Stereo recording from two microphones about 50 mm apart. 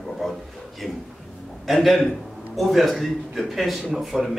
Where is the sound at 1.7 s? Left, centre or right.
Centre.